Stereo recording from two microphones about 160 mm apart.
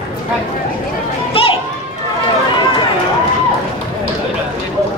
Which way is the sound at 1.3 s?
35° left (ahead or behind).